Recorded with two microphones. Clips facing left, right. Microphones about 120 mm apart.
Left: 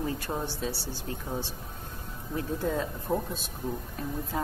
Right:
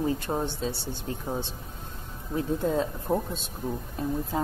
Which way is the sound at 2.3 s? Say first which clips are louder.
Right 4 dB; 25° right (ahead or behind).